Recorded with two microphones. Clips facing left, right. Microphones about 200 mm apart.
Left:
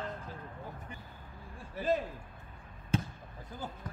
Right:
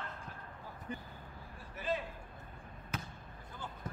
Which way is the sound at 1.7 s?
40° left (ahead or behind).